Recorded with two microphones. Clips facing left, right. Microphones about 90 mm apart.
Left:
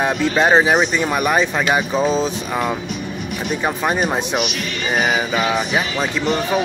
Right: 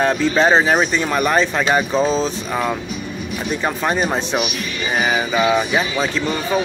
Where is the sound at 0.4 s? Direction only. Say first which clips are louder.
Left 1 dB; 15° left (ahead or behind).